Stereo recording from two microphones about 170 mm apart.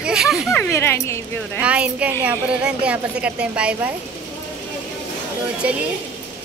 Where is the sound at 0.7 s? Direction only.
15° left (ahead or behind).